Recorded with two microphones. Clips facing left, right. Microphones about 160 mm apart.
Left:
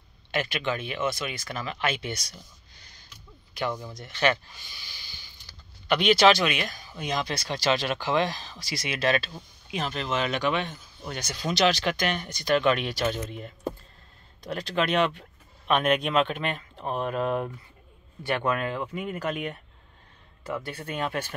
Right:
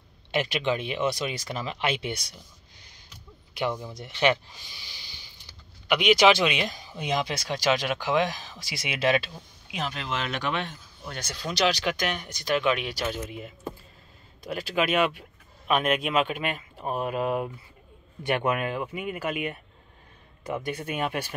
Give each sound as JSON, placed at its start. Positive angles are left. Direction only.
{"t": 0.3, "sound": "speech", "side_deg": -25}
{"t": 3.8, "sound": "speech", "side_deg": -20}
{"t": 5.9, "sound": "speech", "side_deg": -10}
{"t": 9.7, "sound": "speech", "side_deg": -5}
{"t": 11.5, "sound": "speech", "side_deg": -5}